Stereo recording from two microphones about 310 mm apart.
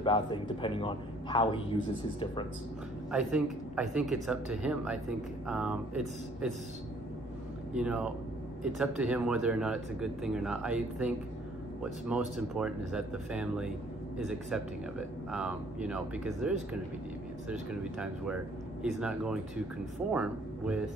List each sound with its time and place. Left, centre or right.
0.0 s a man's voice: centre
3.1 s speech: centre
7.7 s speech: centre